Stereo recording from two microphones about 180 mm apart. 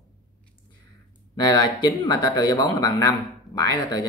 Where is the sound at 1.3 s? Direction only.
20° left (ahead or behind).